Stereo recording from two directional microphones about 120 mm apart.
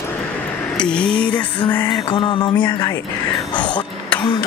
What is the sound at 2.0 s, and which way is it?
Music, 45° left (ahead or behind).